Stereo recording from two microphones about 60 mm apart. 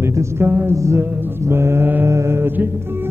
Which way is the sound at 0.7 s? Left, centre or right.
Right.